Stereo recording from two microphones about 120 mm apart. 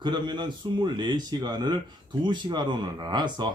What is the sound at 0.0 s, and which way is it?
Speech, 40° right (ahead or behind).